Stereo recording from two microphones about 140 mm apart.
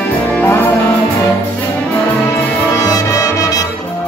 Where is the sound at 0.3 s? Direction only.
10° left (ahead or behind).